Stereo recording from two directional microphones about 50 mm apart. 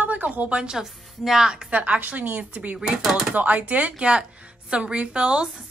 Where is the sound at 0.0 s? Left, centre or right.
Right.